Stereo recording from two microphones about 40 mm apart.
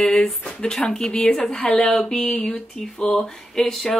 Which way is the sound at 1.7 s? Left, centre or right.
Centre.